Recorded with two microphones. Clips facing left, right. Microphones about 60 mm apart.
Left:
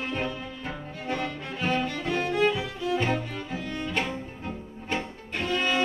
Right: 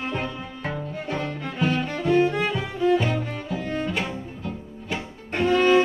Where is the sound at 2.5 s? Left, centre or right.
Right.